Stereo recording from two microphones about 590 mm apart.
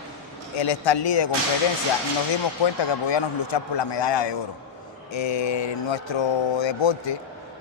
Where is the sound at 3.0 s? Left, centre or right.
Left.